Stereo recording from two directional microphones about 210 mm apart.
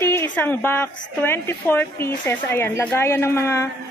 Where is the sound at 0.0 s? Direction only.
10° left (ahead or behind).